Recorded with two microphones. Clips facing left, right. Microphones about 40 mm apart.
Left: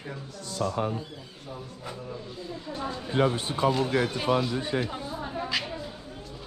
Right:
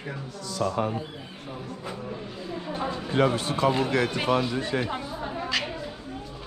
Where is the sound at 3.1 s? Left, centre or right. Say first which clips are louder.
Right 2 dB; right.